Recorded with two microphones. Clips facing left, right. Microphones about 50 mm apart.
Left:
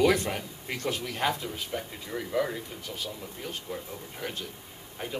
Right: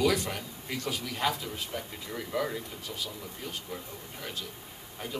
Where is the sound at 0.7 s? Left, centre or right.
Left.